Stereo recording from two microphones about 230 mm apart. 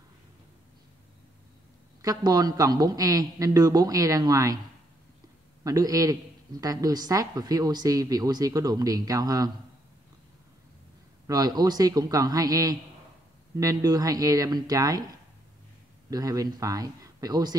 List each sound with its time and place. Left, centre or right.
2.0 s a man's voice: centre
5.6 s a man's voice: centre
11.2 s a man's voice: centre
16.1 s a man's voice: centre